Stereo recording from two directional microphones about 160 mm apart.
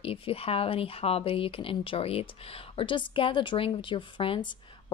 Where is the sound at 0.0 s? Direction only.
35° left (ahead or behind).